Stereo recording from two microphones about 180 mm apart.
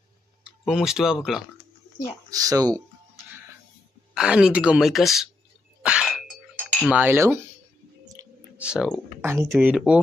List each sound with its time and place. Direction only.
0.4 s speech: 5° right (ahead or behind)
2.3 s speech: 20° right (ahead or behind)
4.1 s a woman's voice: 5° right (ahead or behind)
5.8 s a sound: 5° right (ahead or behind)
6.9 s cutlery: 10° right (ahead or behind)
8.1 s a sound: 10° right (ahead or behind)
9.5 s cutlery: 5° right (ahead or behind)